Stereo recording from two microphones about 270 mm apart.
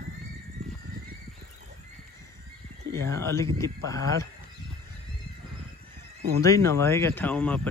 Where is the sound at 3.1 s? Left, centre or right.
Centre.